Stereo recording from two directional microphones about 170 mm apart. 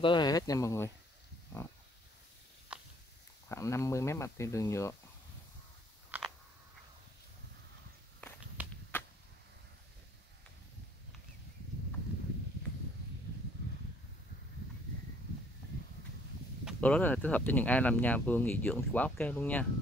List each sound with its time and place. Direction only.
0.0 s speech: 25° left (ahead or behind)
2.7 s walk: 5° right (ahead or behind)
3.4 s speech: 15° left (ahead or behind)
6.1 s a sound: 10° right (ahead or behind)
8.6 s whip: 10° right (ahead or behind)
16.8 s speech: 10° left (ahead or behind)